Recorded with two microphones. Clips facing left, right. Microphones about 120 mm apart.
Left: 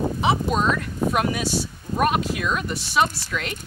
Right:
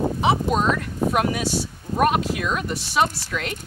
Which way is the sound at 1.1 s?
50° right (ahead or behind).